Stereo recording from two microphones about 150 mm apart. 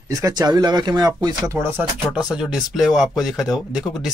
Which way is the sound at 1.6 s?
15° right (ahead or behind).